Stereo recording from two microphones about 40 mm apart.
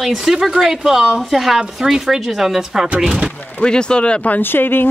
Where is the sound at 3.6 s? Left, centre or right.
Left.